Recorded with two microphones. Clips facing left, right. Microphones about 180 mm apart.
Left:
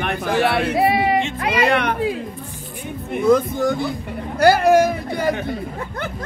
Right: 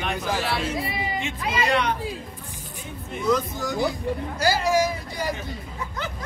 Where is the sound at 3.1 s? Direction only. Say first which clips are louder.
Left 8 dB; 55° left (ahead or behind).